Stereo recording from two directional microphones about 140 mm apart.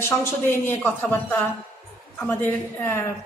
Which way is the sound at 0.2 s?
15° left (ahead or behind).